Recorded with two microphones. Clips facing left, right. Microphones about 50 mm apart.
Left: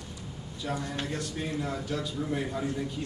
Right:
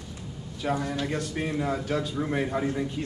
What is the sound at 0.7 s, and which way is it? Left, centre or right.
A man's voice, right.